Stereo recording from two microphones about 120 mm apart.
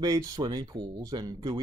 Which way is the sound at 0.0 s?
30° right (ahead or behind).